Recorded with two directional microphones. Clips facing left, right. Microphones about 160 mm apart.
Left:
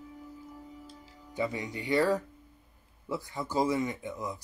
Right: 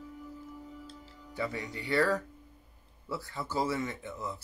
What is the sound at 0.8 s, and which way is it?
Music, 15° left (ahead or behind).